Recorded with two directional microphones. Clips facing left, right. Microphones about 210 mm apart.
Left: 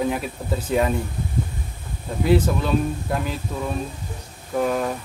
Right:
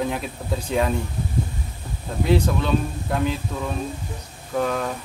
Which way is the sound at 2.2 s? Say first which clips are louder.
Left 1 dB; 5° left (ahead or behind).